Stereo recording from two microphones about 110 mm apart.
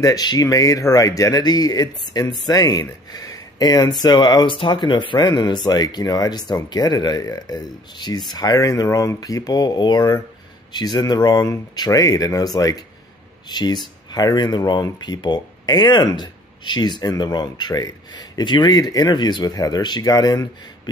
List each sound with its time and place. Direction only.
0.0 s speech: 35° left (ahead or behind)